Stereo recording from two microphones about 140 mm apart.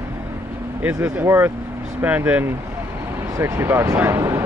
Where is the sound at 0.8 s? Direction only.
15° right (ahead or behind).